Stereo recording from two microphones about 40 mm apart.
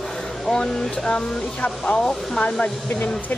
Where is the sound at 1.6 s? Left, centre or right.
Left.